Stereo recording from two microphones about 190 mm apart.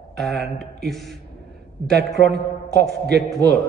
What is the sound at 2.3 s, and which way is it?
Speech, 60° right (ahead or behind).